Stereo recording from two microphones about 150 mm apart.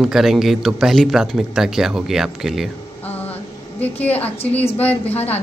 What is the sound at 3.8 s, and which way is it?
A woman's voice, 10° left (ahead or behind).